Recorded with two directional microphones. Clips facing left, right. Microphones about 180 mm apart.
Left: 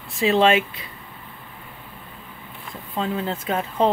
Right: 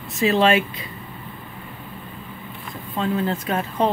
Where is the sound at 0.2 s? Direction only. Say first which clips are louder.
Even; 20° left (ahead or behind).